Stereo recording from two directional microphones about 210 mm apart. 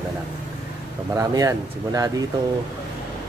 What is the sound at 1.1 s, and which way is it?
Speech, 15° right (ahead or behind).